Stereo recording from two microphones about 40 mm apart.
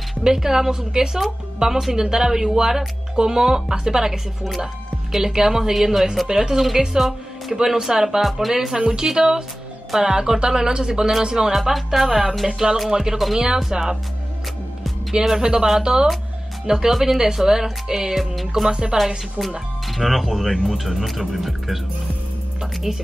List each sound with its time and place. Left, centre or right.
0.2 s speech: centre
15.4 s speech: centre
18.5 s speech: centre
19.0 s speech: centre
22.6 s music: centre